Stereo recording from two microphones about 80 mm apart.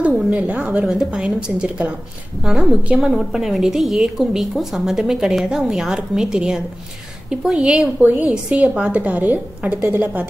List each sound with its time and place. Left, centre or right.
0.3 s a woman's voice: centre